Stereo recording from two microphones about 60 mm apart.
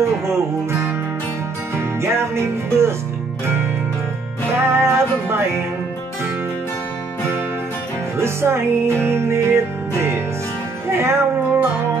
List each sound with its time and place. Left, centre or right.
0.0 s music: right
1.8 s music: right
4.6 s music: right
8.2 s music: right